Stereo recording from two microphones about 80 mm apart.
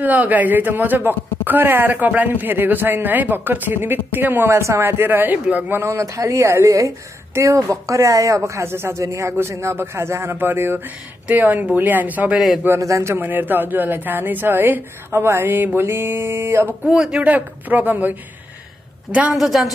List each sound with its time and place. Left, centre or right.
0.0 s a man's voice: right
5.8 s a man's voice: right
12.8 s speech: right
13.2 s a man's voice: right
16.8 s speech: centre
17.3 s a man's voice: right
19.3 s a woman's voice: centre